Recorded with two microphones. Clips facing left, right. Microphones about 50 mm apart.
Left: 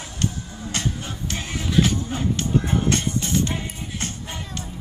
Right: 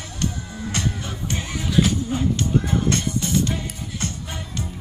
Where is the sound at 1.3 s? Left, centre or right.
Right.